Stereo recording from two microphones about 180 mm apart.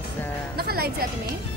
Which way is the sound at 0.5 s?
60° right (ahead or behind).